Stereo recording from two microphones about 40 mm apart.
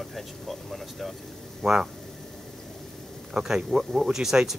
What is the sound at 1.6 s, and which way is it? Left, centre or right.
Speech, centre.